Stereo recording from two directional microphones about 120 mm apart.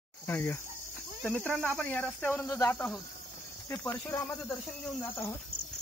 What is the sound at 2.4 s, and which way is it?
Speech, 25° left (ahead or behind).